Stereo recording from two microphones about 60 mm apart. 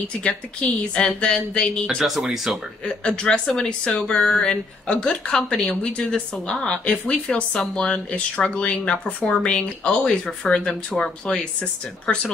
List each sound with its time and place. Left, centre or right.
0.2 s speech: centre
2.0 s speech: centre
2.8 s speech: centre